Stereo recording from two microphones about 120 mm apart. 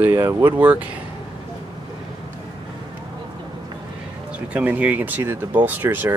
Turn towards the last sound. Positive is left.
turn(degrees=-15)  # may be behind; listen again after turning